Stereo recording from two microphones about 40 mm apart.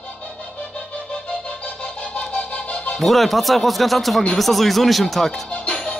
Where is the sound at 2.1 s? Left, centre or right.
Left.